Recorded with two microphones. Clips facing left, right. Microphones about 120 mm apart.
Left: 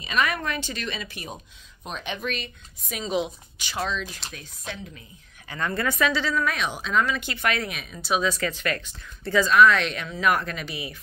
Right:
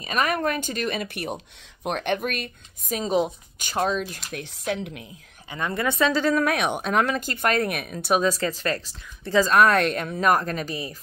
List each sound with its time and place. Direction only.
0.0 s speech: 45° right (ahead or behind)
4.3 s speech: 65° right (ahead or behind)
5.5 s a woman's voice: 20° right (ahead or behind)
6.1 s speech: 55° right (ahead or behind)
7.2 s speech: 45° right (ahead or behind)
9.6 s speech: 50° right (ahead or behind)